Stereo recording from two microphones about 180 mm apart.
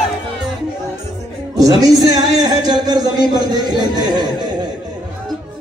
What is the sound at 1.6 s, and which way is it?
A man's voice, 20° right (ahead or behind).